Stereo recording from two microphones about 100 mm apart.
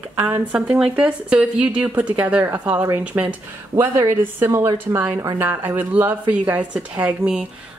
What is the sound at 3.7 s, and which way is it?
Speech, 30° right (ahead or behind).